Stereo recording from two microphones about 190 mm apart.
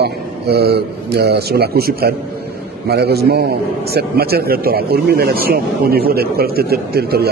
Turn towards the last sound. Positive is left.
turn(degrees=-55)  # may be behind; listen again after turning